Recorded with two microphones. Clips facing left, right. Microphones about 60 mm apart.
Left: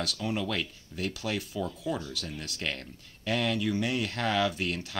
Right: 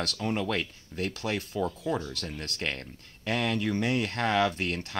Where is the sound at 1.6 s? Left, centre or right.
Right.